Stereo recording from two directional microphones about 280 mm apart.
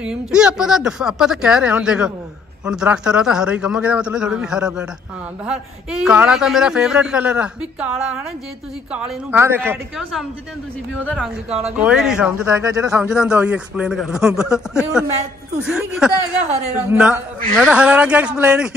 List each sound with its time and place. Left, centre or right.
0.0 s a man's voice: centre
11.7 s a man's voice: centre